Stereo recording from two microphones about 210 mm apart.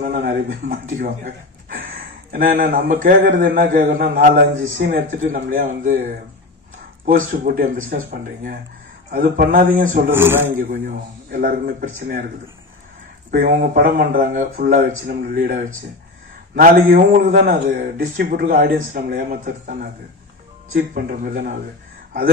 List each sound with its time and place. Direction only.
0.0 s a man's voice: 40° right (ahead or behind)
4.6 s speech: 70° right (ahead or behind)
4.8 s a man's voice: 40° right (ahead or behind)
9.1 s a man's voice: 40° right (ahead or behind)
10.1 s speech: 10° right (ahead or behind)
10.7 s a man's voice: 40° right (ahead or behind)
13.3 s a man's voice: 45° right (ahead or behind)